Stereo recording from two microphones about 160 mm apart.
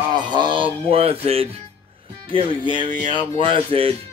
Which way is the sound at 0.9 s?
40° right (ahead or behind).